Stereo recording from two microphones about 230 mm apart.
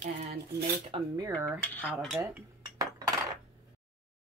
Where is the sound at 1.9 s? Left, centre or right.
Centre.